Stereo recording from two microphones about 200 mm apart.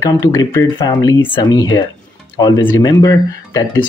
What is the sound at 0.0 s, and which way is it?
Speech, 15° left (ahead or behind).